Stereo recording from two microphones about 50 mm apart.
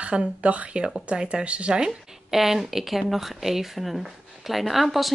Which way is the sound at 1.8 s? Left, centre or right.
Centre.